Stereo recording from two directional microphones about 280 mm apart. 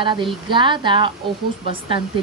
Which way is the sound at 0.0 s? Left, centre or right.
Centre.